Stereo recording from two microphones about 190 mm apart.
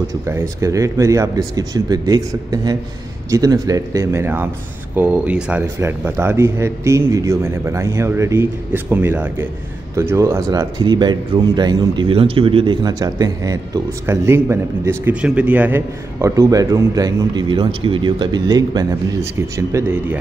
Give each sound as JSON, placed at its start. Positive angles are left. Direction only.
{"t": 0.3, "sound": "speech", "side_deg": -15}